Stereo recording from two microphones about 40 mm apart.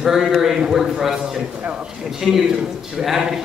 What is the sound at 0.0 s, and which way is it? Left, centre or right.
A man's voice, centre.